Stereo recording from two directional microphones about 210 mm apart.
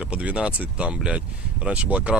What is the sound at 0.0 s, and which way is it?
Speech, 5° right (ahead or behind).